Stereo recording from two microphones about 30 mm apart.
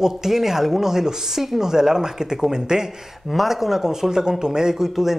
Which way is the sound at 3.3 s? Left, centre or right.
Centre.